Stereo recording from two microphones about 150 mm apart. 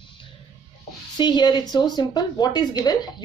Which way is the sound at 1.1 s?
30° left (ahead or behind).